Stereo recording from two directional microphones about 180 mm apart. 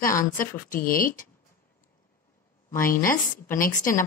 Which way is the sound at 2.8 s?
50° left (ahead or behind).